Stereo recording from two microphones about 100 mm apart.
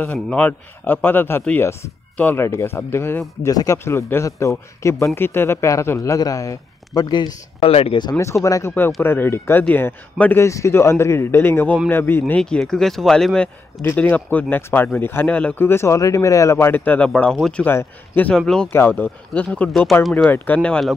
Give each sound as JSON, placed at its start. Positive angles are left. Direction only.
{"t": 0.3, "sound": "speech", "side_deg": 15}
{"t": 7.6, "sound": "speech", "side_deg": 75}
{"t": 8.5, "sound": "speech", "side_deg": 35}
{"t": 9.0, "sound": "speech", "side_deg": 20}
{"t": 10.4, "sound": "speech", "side_deg": 30}
{"t": 12.4, "sound": "speech", "side_deg": 10}
{"t": 13.8, "sound": "speech", "side_deg": 15}
{"t": 15.2, "sound": "speech", "side_deg": 10}
{"t": 17.6, "sound": "speech", "side_deg": 20}
{"t": 18.3, "sound": "speech", "side_deg": 5}
{"t": 18.7, "sound": "speech", "side_deg": 20}
{"t": 19.9, "sound": "speech", "side_deg": 0}
{"t": 20.2, "sound": "speech", "side_deg": 15}